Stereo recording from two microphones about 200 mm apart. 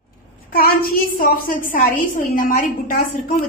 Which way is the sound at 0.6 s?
45° left (ahead or behind).